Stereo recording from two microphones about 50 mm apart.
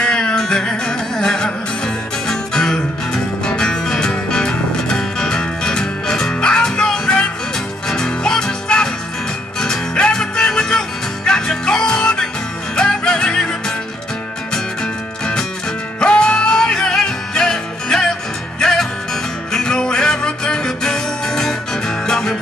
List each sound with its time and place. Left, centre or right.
0.0 s music: centre
16.0 s music: centre